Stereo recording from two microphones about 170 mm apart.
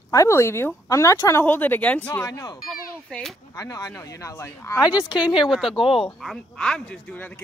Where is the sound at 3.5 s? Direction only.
20° left (ahead or behind).